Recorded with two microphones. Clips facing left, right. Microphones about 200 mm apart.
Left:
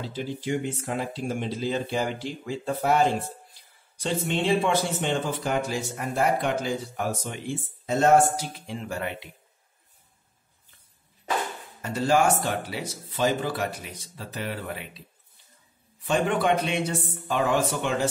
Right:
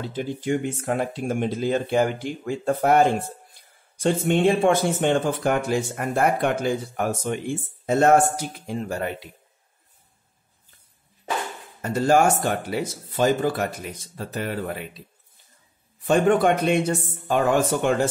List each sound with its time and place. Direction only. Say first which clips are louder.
0.0 s speech: right 3 dB; 50° right (ahead or behind)
11.8 s speech: right 4 dB; 45° right (ahead or behind)
16.1 s speech: right 5 dB; 45° right (ahead or behind)